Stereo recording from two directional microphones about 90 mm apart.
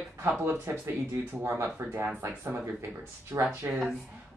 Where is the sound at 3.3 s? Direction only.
35° right (ahead or behind).